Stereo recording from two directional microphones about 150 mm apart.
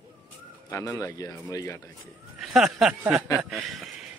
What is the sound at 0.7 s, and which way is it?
Speech, 20° left (ahead or behind).